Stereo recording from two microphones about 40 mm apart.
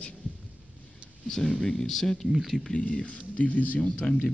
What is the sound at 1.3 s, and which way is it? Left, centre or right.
Speech, centre.